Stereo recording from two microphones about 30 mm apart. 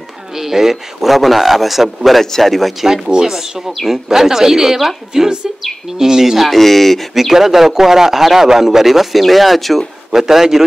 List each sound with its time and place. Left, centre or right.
0.3 s a man's voice: centre
1.1 s a man's voice: centre
3.3 s a man's voice: centre
6.5 s speech: centre
7.2 s a man's voice: centre
10.1 s a man's voice: centre